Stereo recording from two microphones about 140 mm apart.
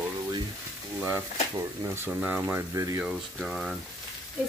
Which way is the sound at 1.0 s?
20° right (ahead or behind).